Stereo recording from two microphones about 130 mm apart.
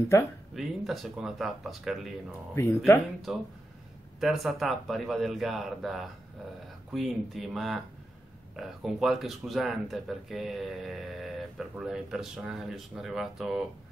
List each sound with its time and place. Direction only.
0.1 s speech: 25° left (ahead or behind)
0.6 s speech: centre (ahead or behind)
2.6 s speech: 20° left (ahead or behind)
3.3 s speech: centre (ahead or behind)